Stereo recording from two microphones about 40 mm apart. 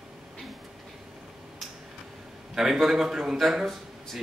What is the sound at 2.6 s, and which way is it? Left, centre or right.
Speech, centre.